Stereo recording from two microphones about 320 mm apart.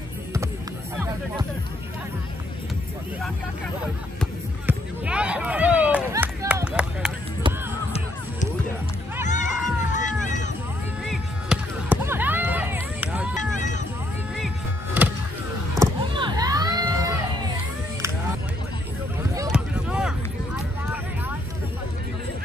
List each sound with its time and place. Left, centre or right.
4.2 s music: centre
9.2 s run: left
11.1 s music: centre
13.6 s vehicle: left
15.7 s a sound: centre
19.3 s a sound: centre